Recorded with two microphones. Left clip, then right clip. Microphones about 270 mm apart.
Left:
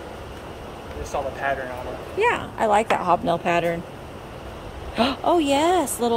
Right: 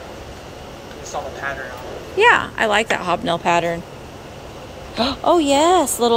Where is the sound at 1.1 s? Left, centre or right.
Left.